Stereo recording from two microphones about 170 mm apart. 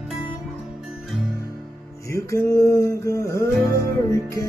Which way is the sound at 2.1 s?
20° left (ahead or behind).